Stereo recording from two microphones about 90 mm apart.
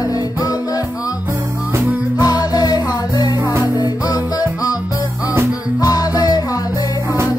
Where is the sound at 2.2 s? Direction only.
50° left (ahead or behind).